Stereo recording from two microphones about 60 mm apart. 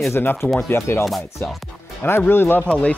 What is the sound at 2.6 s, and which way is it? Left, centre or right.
Speech, left.